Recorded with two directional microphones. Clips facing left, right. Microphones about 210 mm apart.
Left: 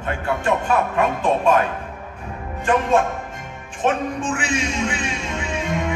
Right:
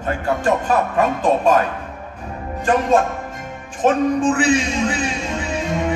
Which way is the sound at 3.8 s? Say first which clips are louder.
Right 6 dB; 35° right (ahead or behind).